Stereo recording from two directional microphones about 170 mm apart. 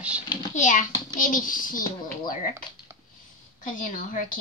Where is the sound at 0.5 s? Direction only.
50° left (ahead or behind).